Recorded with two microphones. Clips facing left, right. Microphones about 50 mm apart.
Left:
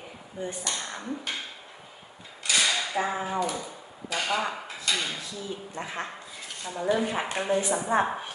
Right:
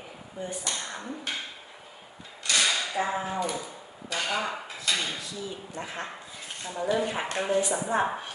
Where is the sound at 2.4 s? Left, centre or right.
Centre.